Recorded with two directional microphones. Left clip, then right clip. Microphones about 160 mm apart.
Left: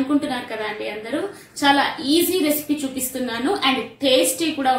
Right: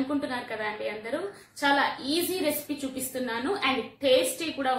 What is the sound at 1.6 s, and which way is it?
Speech, 5° right (ahead or behind).